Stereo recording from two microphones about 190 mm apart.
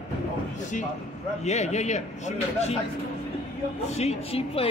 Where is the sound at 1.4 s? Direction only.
35° left (ahead or behind).